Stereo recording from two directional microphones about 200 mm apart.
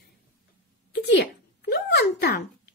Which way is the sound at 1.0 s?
55° left (ahead or behind).